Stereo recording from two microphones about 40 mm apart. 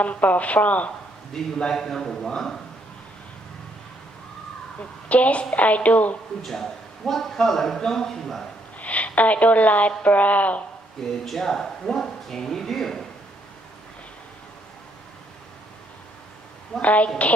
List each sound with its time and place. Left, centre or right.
0.0 s speech: left
1.3 s a man's voice: centre
4.7 s a woman's voice: left
6.4 s a man's voice: centre
8.7 s a woman's voice: left
11.2 s speech: centre
16.8 s speech: left